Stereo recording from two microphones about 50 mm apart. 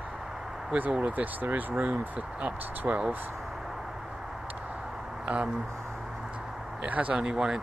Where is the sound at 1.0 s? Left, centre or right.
Right.